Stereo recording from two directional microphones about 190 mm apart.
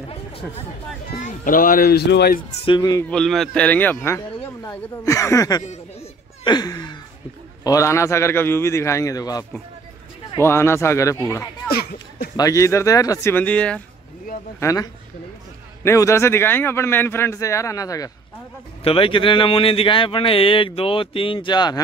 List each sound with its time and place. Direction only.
1.1 s speech: 45° left (ahead or behind)
2.6 s speech: 25° left (ahead or behind)
3.1 s speech: centre (ahead or behind)
6.4 s a sound: 20° left (ahead or behind)
7.6 s speech: 15° left (ahead or behind)
11.7 s speech: 55° left (ahead or behind)
12.4 s speech: 15° left (ahead or behind)
18.9 s speech: 30° left (ahead or behind)